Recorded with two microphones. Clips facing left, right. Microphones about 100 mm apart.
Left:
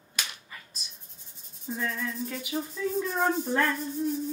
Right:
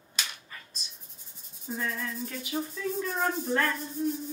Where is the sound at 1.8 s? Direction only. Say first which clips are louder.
Left 2 dB; centre (ahead or behind).